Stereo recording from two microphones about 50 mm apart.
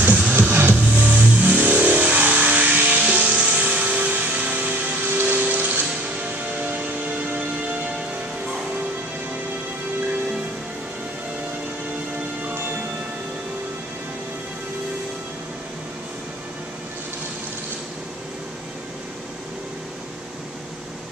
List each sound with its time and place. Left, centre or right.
0.0 s music: right
0.4 s music: right